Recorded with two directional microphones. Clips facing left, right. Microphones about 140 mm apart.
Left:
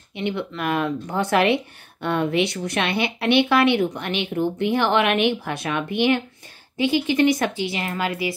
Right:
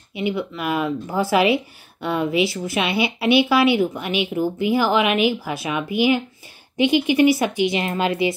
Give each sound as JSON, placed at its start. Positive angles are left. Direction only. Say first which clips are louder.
{"t": 0.1, "sound": "speech", "louder": "right 2 dB", "side_deg": -5}
{"t": 6.8, "sound": "speech", "louder": "right 3 dB", "side_deg": -15}